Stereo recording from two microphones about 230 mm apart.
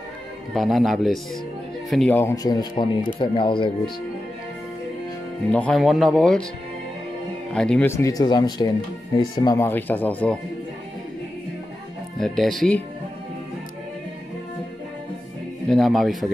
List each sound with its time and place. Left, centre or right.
0.6 s speech: centre; by 3.9 s left
5.5 s speech: centre
7.5 s speech: centre
8.0 s speech: centre
12.2 s speech: centre
15.7 s speech: centre